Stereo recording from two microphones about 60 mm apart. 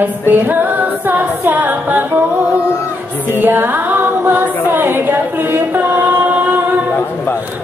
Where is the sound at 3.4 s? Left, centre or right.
Right.